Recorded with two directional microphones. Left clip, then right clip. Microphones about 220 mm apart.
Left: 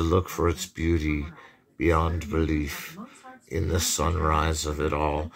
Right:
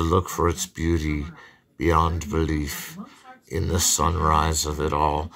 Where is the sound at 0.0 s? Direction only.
15° right (ahead or behind).